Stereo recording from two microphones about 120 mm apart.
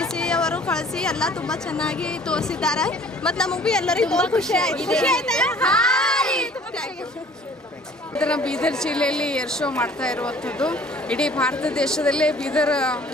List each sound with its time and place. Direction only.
0.0 s speech: 5° left (ahead or behind)
8.2 s a woman's voice: 10° left (ahead or behind)